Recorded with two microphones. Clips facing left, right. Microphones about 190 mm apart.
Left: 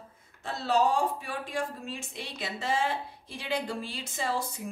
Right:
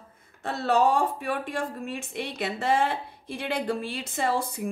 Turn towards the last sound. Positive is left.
turn(degrees=-60)  # may be behind; listen again after turning